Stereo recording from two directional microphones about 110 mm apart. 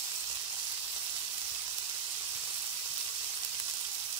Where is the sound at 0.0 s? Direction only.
40° right (ahead or behind).